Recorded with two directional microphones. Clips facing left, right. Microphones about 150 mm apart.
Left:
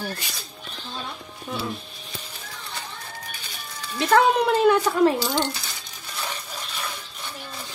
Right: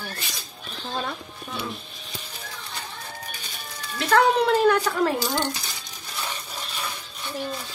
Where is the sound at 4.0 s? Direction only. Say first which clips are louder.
Left 1 dB; 20° left (ahead or behind).